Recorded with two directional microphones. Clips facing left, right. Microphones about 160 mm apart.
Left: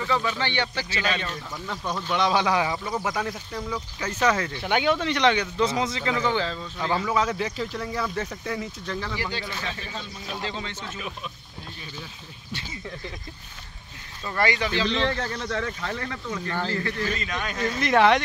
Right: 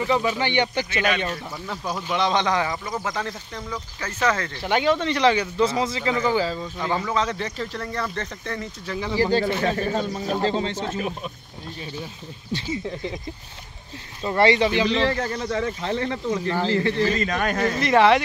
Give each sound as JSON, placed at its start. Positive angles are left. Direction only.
{"t": 0.0, "sound": "speech", "side_deg": -15}
{"t": 1.7, "sound": "speech", "side_deg": -10}
{"t": 4.6, "sound": "speech", "side_deg": 0}
{"t": 7.1, "sound": "speech", "side_deg": 5}
{"t": 9.1, "sound": "speech", "side_deg": -40}
{"t": 14.2, "sound": "speech", "side_deg": -25}
{"t": 14.9, "sound": "speech", "side_deg": -5}
{"t": 15.6, "sound": "speech", "side_deg": -25}
{"t": 17.0, "sound": "speech", "side_deg": -45}
{"t": 17.7, "sound": "speech", "side_deg": 0}